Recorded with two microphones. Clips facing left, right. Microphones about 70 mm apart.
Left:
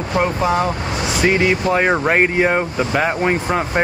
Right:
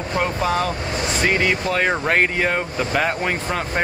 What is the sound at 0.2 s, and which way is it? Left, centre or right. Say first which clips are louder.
Speech: left 4 dB; centre.